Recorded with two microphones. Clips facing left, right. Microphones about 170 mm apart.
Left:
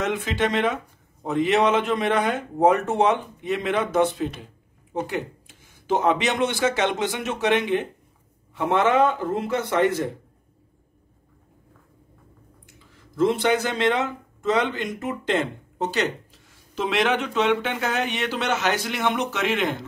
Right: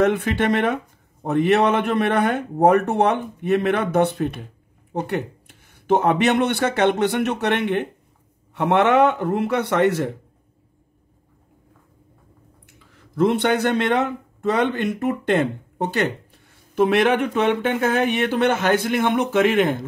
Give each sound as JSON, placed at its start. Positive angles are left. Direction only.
{"t": 0.0, "sound": "a man's voice", "side_deg": -60}
{"t": 12.6, "sound": "speech", "side_deg": -65}